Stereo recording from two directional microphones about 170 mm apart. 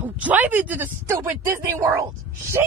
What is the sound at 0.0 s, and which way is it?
Speech, 10° right (ahead or behind).